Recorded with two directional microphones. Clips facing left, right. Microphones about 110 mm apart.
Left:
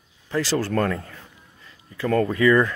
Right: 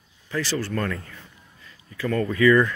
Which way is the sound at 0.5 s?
45° left (ahead or behind).